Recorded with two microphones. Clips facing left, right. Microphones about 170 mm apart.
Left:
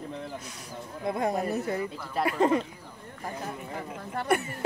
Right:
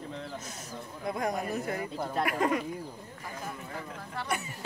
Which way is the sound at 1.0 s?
25° left (ahead or behind).